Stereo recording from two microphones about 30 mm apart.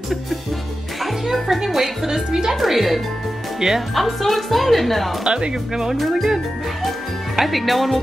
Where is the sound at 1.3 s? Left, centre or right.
Centre.